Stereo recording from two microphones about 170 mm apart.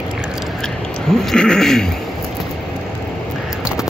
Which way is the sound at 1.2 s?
5° left (ahead or behind).